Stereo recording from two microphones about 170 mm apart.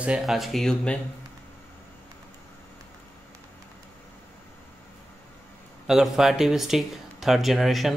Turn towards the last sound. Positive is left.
turn(degrees=0)  # may be behind; listen again after turning